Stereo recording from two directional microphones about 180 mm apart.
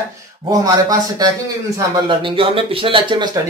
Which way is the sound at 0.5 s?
20° right (ahead or behind).